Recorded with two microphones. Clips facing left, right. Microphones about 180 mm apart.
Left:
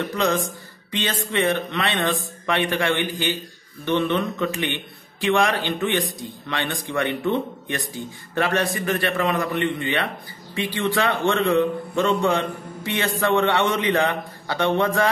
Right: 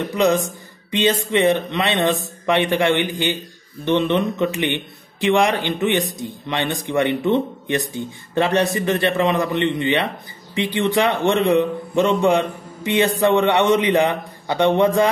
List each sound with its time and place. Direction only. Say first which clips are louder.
0.0 s speech: right 5 dB; 15° right (ahead or behind)